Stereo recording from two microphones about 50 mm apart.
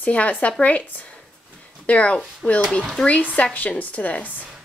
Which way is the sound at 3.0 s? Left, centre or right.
Left.